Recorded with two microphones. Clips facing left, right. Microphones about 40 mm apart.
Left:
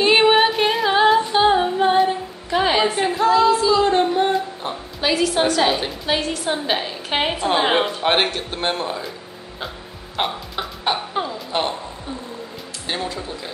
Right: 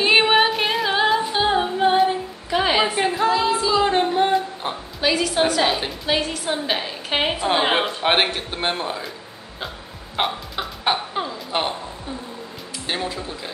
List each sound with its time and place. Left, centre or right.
0.0 s singing: centre
4.6 s a woman's voice: right
5.0 s a woman's voice: centre
10.1 s cough: centre
11.1 s a sound: centre
12.8 s speech: centre